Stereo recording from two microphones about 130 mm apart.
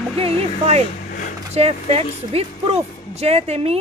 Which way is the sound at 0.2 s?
50° right (ahead or behind).